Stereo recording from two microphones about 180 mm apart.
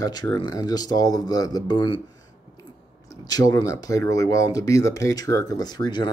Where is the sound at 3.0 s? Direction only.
20° left (ahead or behind).